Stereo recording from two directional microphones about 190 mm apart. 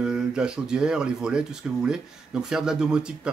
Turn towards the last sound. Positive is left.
turn(degrees=-5)  # may be behind; listen again after turning